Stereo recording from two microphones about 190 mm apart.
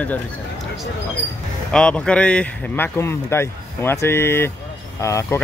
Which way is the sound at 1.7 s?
5° left (ahead or behind).